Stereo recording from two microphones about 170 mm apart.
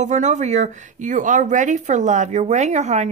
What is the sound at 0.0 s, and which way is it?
Speech, 45° right (ahead or behind).